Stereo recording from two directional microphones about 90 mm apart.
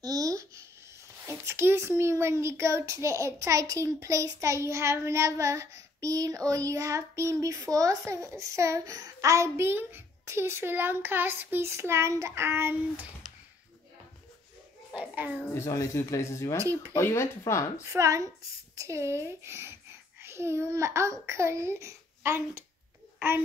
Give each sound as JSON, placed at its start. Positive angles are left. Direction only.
{"t": 0.0, "sound": "a sound", "side_deg": -40}
{"t": 1.2, "sound": "a child's voice", "side_deg": -30}
{"t": 15.0, "sound": "a child's voice", "side_deg": -20}
{"t": 15.5, "sound": "speech", "side_deg": 35}
{"t": 17.8, "sound": "a child's voice", "side_deg": -35}
{"t": 23.1, "sound": "babbling", "side_deg": -25}